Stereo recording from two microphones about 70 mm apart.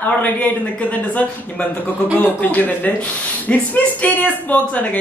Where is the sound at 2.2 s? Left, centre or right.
Left.